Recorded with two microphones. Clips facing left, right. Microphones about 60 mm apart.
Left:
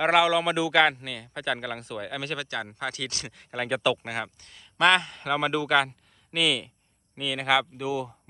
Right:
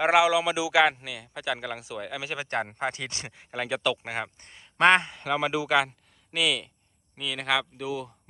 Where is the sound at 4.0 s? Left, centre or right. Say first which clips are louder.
Even; centre.